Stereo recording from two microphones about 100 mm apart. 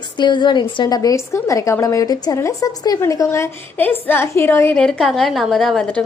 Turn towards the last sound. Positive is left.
turn(degrees=5)  # may be behind; listen again after turning